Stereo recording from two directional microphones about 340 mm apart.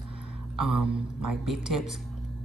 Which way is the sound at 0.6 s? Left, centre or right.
Right.